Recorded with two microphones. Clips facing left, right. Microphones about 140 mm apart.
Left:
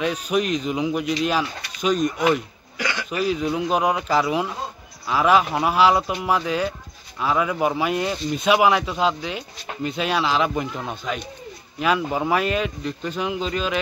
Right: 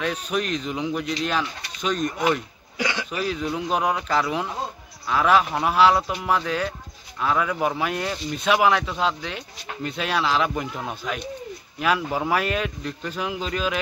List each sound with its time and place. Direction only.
0.0 s speech: 5° left (ahead or behind)
2.8 s throat clearing: 25° right (ahead or behind)
3.1 s speech: 5° left (ahead or behind)